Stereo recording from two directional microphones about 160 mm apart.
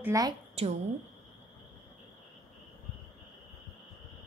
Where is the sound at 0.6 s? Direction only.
40° right (ahead or behind).